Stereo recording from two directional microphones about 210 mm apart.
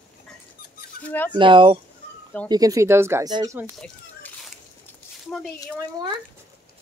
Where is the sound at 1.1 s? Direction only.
5° left (ahead or behind).